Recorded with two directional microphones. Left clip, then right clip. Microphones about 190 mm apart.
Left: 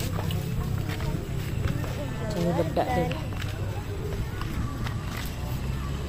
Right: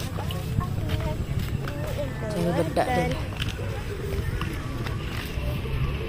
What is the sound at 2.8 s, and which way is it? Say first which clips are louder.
Speech: right 3 dB; 10° right (ahead or behind).